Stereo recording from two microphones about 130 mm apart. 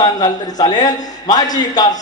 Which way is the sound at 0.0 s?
30° left (ahead or behind).